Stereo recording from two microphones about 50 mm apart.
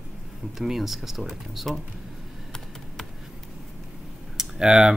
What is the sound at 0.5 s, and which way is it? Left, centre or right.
Speech, centre.